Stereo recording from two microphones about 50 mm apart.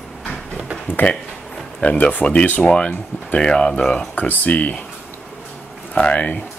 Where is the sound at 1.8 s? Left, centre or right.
Left.